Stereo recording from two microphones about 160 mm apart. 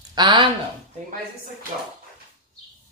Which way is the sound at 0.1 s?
25° right (ahead or behind).